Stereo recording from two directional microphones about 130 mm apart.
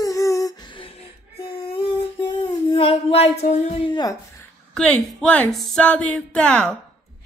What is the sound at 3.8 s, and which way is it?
Speech, 35° left (ahead or behind).